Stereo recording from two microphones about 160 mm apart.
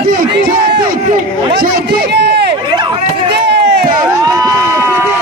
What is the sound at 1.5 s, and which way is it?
A man's voice, 90° right.